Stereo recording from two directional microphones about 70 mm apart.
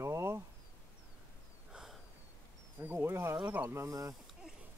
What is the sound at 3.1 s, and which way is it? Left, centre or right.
Wild animals, right.